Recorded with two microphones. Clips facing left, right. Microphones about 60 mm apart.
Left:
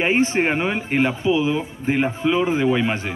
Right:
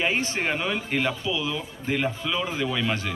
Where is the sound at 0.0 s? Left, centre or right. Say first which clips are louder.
Left 7 dB; left.